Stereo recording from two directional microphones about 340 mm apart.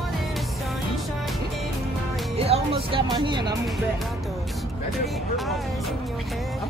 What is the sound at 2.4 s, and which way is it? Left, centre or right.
Music, centre.